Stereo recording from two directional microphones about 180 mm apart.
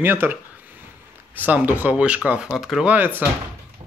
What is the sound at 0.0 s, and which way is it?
Speech, 10° right (ahead or behind).